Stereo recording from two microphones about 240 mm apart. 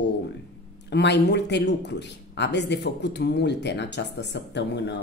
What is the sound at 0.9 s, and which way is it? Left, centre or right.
Speech, left.